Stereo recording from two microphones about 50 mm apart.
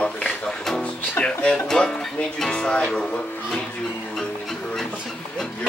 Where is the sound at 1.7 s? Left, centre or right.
Centre.